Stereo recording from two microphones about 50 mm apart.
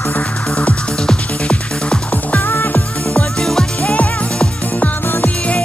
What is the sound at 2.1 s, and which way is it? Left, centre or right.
Music, left.